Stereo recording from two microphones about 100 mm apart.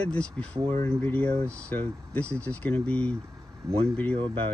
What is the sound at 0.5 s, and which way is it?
Speech, 65° right (ahead or behind).